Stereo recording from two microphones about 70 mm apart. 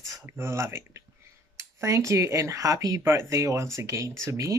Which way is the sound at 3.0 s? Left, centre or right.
Right.